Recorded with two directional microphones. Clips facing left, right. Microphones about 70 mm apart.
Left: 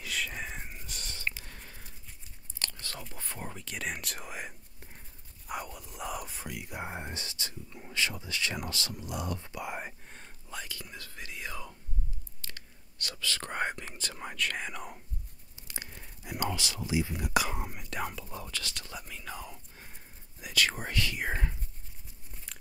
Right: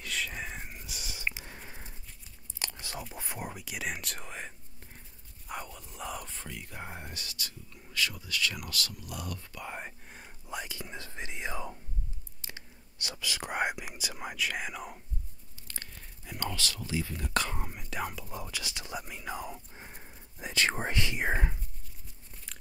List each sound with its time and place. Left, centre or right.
0.0 s whispering: centre
5.5 s speech: centre
9.8 s whispering: centre
10.5 s whispering: right; by 15.0 s centre
15.6 s speech: centre; by 21.5 s right